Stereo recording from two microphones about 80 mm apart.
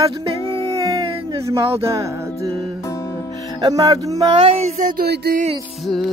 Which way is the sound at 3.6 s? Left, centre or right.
Right.